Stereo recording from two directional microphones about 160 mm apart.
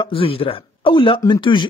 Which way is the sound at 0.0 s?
35° left (ahead or behind).